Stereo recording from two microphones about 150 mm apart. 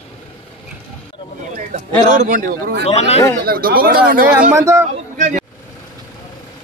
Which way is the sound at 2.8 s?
45° left (ahead or behind).